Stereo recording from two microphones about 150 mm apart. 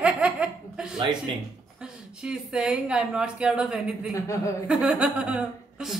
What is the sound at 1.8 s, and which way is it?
Speech, 5° right (ahead or behind).